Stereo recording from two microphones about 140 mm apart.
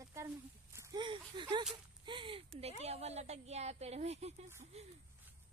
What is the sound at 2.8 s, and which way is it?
A woman's voice, 50° right (ahead or behind).